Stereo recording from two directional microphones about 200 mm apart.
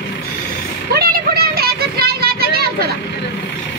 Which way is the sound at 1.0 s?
50° right (ahead or behind).